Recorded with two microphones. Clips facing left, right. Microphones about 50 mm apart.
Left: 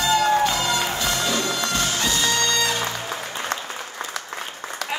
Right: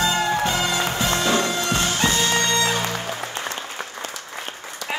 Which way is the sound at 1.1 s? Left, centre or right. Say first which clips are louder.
Right 3 dB; right.